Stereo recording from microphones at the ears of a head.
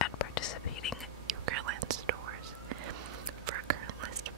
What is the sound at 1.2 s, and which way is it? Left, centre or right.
Whispering, right.